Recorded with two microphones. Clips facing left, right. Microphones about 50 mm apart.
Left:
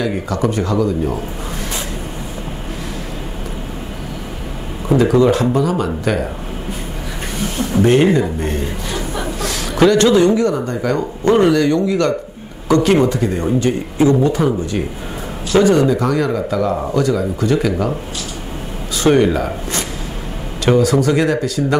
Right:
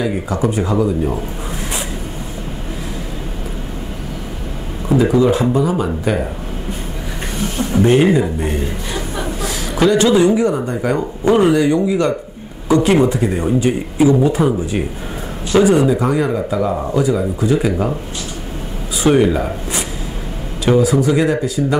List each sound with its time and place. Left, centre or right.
0.5 s speech: centre
5.1 s speech: centre
7.5 s speech: centre
19.0 s speech: centre